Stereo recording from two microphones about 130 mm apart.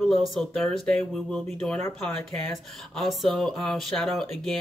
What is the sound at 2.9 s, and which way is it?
Speech, centre (ahead or behind).